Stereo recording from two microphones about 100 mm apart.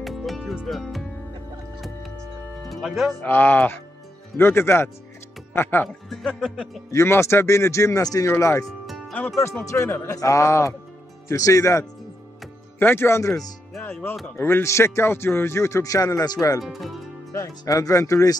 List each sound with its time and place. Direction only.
0.0 s music: centre (ahead or behind)
2.7 s speech: centre (ahead or behind)
3.3 s a man's voice: 20° left (ahead or behind)
6.0 s speech: 5° left (ahead or behind)
6.9 s a man's voice: 30° left (ahead or behind)
8.6 s music: centre (ahead or behind)
9.7 s a man's voice: 30° left (ahead or behind)
14.3 s a man's voice: 25° left (ahead or behind)
16.6 s speech: centre (ahead or behind)
17.3 s speech: 30° left (ahead or behind)